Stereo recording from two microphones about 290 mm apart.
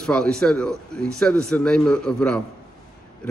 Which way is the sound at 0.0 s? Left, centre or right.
Centre.